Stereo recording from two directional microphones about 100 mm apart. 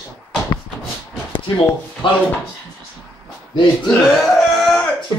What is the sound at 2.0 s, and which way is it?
Speech, 55° left (ahead or behind).